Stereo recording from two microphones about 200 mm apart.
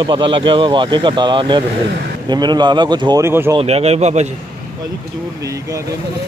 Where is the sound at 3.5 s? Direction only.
30° right (ahead or behind).